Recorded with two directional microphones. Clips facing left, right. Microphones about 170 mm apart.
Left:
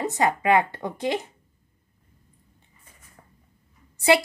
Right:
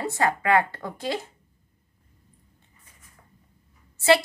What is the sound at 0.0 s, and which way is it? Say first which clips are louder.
A woman's voice: left 2 dB; 20° left (ahead or behind).